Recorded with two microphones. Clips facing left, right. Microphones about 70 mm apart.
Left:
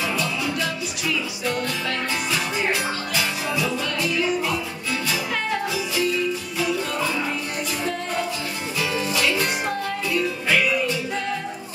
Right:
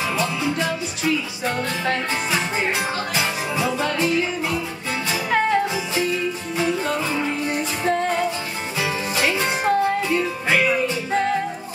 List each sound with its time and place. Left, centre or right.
0.2 s music: right
5.1 s music: right
8.7 s music: right